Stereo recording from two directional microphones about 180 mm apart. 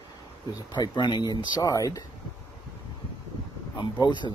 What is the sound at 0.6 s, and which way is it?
Speech, 25° left (ahead or behind).